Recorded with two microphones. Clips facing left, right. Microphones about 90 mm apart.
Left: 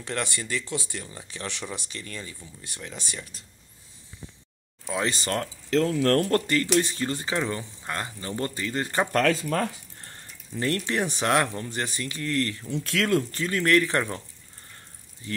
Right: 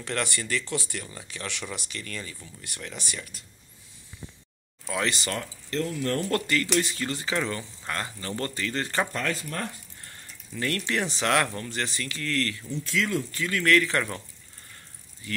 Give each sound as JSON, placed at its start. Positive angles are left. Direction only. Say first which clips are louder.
{"t": 0.0, "sound": "speech", "louder": "even", "side_deg": 20}
{"t": 4.8, "sound": "speech", "louder": "left 1 dB", "side_deg": 25}
{"t": 5.7, "sound": "speech", "louder": "left 7 dB", "side_deg": 90}
{"t": 6.2, "sound": "speech", "louder": "left 3 dB", "side_deg": 35}
{"t": 9.1, "sound": "speech", "louder": "left 8 dB", "side_deg": 90}
{"t": 9.9, "sound": "a sound", "louder": "left 1 dB", "side_deg": 35}
{"t": 11.1, "sound": "speech", "louder": "left 1 dB", "side_deg": 20}
{"t": 12.7, "sound": "speech", "louder": "left 4 dB", "side_deg": 65}
{"t": 13.3, "sound": "speech", "louder": "left 1 dB", "side_deg": 30}
{"t": 15.2, "sound": "speech", "louder": "left 1 dB", "side_deg": 30}